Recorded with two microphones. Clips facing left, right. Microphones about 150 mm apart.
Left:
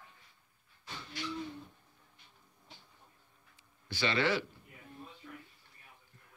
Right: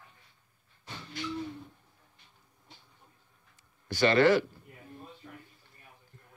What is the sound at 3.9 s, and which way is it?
Speech, 50° right (ahead or behind).